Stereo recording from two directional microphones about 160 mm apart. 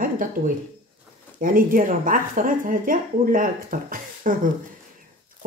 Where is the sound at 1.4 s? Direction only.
60° right (ahead or behind).